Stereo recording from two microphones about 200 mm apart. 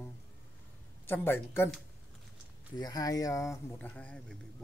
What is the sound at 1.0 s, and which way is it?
Speech, 10° left (ahead or behind).